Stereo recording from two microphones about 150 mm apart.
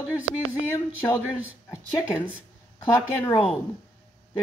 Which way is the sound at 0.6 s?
20° left (ahead or behind).